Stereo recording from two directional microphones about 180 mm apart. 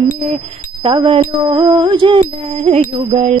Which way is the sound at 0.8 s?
30° right (ahead or behind).